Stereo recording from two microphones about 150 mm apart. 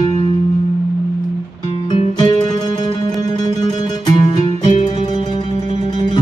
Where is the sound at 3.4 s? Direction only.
25° left (ahead or behind).